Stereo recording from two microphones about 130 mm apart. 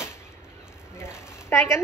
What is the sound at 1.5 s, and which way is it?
Speech, 20° left (ahead or behind).